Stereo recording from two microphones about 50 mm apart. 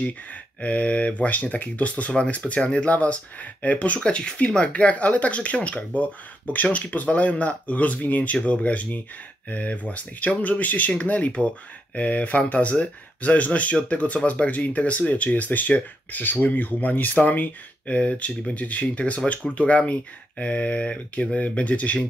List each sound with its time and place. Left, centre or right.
0.6 s speech: left